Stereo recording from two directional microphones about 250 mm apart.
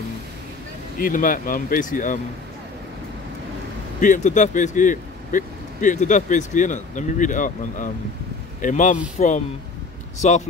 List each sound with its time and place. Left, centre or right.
0.9 s speech: left
4.0 s speech: left